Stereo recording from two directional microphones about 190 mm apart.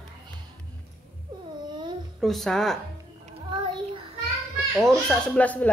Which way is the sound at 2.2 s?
Centre (ahead or behind).